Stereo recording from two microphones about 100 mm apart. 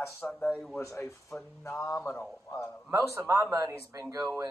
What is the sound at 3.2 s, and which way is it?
Speech, 25° right (ahead or behind).